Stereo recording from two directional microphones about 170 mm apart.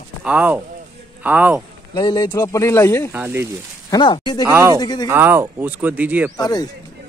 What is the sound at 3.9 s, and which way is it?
Speech, 25° left (ahead or behind).